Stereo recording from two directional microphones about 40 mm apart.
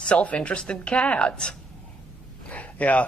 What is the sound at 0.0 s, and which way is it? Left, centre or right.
Speech, left.